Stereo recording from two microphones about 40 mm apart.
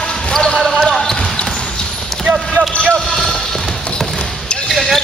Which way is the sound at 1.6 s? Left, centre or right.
Centre.